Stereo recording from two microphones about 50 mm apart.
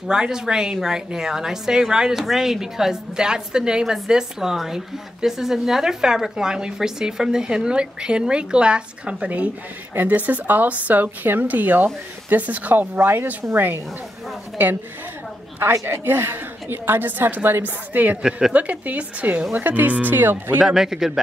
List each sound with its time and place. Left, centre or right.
0.1 s a woman's voice: centre; by 13.0 s right
13.0 s a woman's voice: right
15.9 s a woman's voice: right
20.6 s a woman's voice: centre